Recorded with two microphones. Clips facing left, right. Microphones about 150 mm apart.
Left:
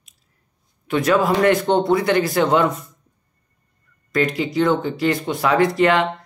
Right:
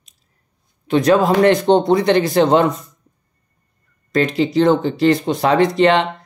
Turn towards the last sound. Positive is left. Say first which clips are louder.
# right 3 dB
turn(degrees=-25)  # may be behind; listen again after turning